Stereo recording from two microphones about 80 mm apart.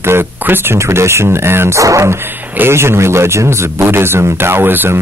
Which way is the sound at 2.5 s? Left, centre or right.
Right.